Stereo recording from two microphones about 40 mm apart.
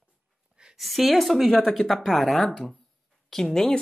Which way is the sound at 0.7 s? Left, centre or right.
Centre.